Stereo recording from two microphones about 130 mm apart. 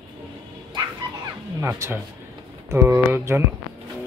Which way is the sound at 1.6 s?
20° right (ahead or behind).